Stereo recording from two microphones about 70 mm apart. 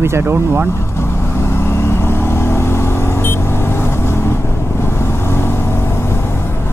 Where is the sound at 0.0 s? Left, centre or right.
Right.